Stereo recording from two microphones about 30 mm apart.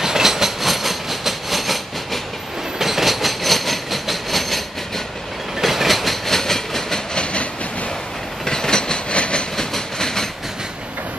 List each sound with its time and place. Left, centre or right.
0.0 s train: centre
2.8 s train: centre
6.2 s train: centre
7.2 s train: left
8.5 s train: left
9.1 s train: left
9.6 s train: centre